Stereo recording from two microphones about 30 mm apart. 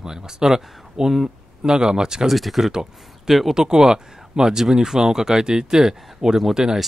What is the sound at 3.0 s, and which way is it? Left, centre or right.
Speech, centre.